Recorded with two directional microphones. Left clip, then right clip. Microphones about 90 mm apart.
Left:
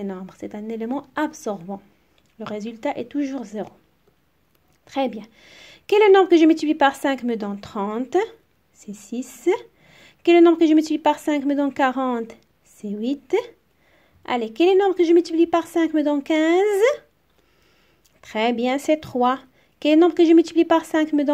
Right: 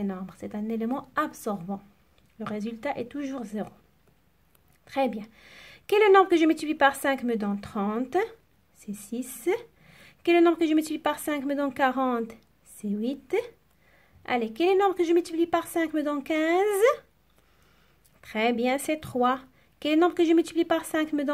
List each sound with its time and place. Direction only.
0.0 s a woman's voice: 35° left (ahead or behind)
4.8 s a woman's voice: 30° left (ahead or behind)
18.2 s a woman's voice: 35° left (ahead or behind)